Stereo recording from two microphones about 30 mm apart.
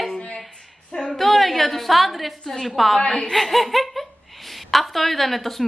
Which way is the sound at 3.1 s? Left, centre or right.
Centre.